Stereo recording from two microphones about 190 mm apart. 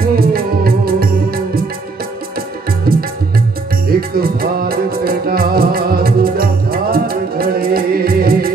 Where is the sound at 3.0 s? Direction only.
50° right (ahead or behind).